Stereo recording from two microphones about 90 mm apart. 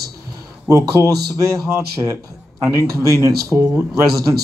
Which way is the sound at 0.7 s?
35° right (ahead or behind).